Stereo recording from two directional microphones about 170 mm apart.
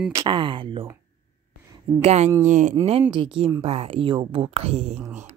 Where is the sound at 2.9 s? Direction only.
30° right (ahead or behind).